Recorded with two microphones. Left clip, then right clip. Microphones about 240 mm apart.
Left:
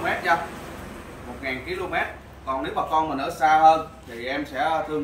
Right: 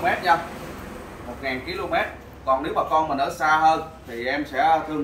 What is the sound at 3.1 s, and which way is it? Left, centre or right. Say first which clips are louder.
Speech: left 1 dB; centre.